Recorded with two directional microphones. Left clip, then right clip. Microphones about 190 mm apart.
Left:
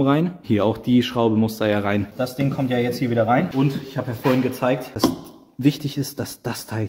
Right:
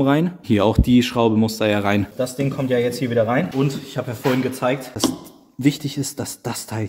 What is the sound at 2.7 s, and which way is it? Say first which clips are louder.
Speech: right 5 dB; 15° left (ahead or behind).